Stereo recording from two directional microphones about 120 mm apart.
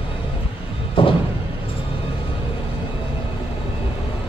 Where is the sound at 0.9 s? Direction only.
45° left (ahead or behind).